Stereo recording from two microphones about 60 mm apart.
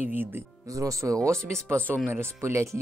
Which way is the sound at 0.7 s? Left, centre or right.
Right.